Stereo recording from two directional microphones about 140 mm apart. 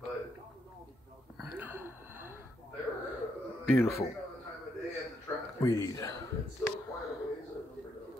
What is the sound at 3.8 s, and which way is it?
Speech, 20° left (ahead or behind).